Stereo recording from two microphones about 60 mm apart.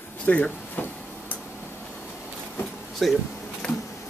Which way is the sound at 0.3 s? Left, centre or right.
Left.